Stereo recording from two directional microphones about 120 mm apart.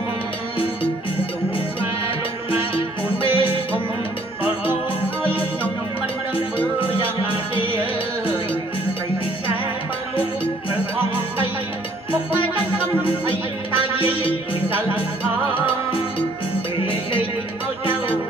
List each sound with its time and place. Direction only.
3.3 s music: 50° left (ahead or behind)
6.8 s music: 45° left (ahead or behind)
13.0 s music: 50° left (ahead or behind)
16.8 s music: 45° left (ahead or behind)